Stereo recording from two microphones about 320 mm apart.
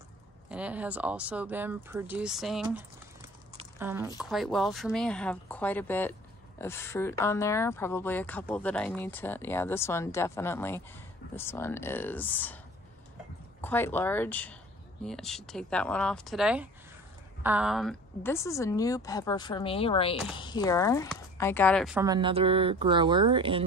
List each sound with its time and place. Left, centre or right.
0.5 s speech: centre
2.6 s a sound: centre
4.2 s speech: centre
13.6 s speech: centre
22.0 s speech: centre